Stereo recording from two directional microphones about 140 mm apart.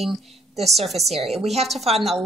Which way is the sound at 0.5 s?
50° right (ahead or behind).